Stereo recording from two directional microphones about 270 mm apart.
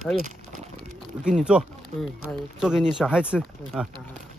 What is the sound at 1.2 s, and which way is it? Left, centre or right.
Speech, centre.